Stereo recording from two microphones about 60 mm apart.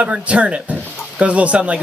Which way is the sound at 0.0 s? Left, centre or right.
Right.